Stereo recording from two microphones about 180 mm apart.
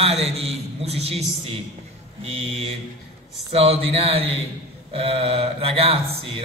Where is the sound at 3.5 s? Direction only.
35° right (ahead or behind).